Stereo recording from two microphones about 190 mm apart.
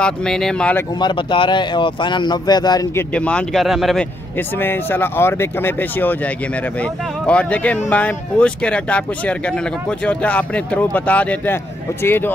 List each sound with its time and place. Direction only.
0.0 s speech: 5° left (ahead or behind)
0.9 s speech: 25° left (ahead or behind)
3.2 s speech: 5° left (ahead or behind)
4.4 s speech: 10° left (ahead or behind)